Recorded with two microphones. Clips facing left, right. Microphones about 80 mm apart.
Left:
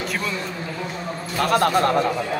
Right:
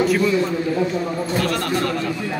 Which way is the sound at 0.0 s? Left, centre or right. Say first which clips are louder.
Right 9 dB; centre.